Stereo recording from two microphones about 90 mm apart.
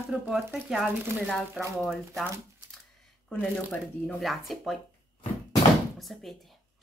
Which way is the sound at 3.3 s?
10° left (ahead or behind).